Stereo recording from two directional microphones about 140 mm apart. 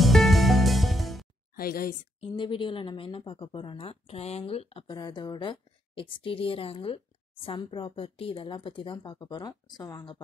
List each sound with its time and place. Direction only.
0.0 s music: centre (ahead or behind)
1.5 s speech: 90° left
2.1 s speech: 40° left (ahead or behind)
4.9 s speech: 30° left (ahead or behind)